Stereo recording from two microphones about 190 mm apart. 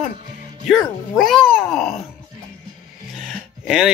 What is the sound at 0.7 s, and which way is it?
Speech, centre (ahead or behind).